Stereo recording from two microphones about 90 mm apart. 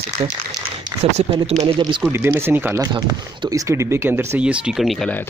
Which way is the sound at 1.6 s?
65° right (ahead or behind).